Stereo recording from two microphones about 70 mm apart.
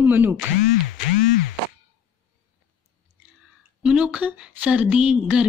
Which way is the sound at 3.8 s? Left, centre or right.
Centre.